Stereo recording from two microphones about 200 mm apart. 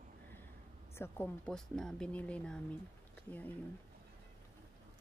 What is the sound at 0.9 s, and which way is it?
Speech, 10° left (ahead or behind).